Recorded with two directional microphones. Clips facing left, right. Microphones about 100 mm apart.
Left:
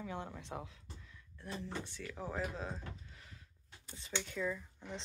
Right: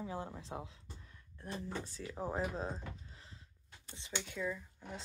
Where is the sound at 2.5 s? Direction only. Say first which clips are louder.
Right 3 dB; 35° right (ahead or behind).